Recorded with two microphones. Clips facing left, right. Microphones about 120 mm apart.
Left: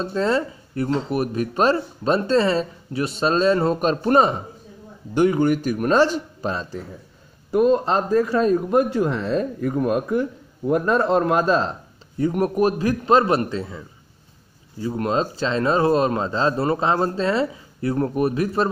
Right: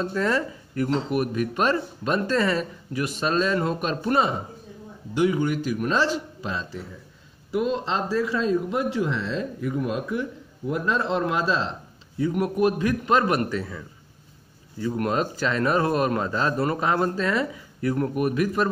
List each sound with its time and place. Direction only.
0.0 s a man's voice: 25° left (ahead or behind)
15.0 s a man's voice: 25° left (ahead or behind)